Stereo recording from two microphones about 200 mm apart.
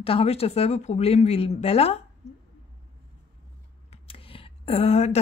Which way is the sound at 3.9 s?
30° left (ahead or behind).